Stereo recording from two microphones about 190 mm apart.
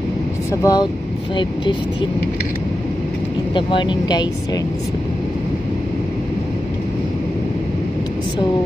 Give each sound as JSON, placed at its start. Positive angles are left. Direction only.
{"t": 0.5, "sound": "speech", "side_deg": 20}
{"t": 3.5, "sound": "speech", "side_deg": 25}